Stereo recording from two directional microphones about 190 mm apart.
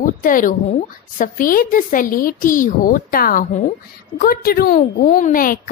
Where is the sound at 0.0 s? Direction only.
45° left (ahead or behind).